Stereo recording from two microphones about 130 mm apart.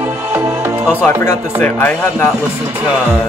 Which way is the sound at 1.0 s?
15° left (ahead or behind).